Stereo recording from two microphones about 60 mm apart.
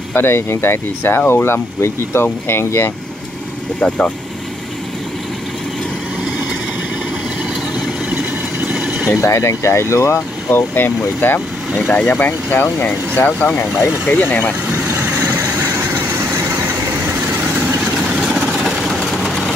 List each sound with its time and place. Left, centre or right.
0.1 s speech: left
3.8 s speech: centre
8.1 s vehicle: right
8.7 s vehicle: centre
9.1 s speech: left
10.5 s speech: left
14.9 s vehicle: right
17.0 s vehicle: right
18.0 s vehicle: centre